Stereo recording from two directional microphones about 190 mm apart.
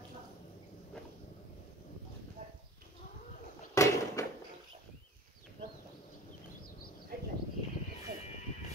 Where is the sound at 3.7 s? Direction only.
15° left (ahead or behind).